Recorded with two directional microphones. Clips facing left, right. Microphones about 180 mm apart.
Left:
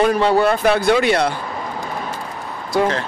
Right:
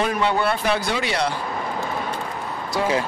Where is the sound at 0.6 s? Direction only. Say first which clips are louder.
Left 8 dB; 55° left (ahead or behind).